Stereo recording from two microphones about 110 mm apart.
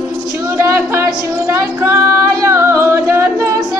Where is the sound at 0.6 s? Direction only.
20° right (ahead or behind).